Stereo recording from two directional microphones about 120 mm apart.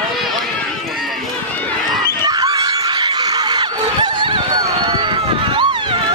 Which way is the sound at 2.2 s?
30° right (ahead or behind).